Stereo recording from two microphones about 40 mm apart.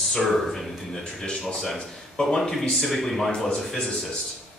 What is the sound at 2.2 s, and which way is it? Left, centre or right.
Speech, left.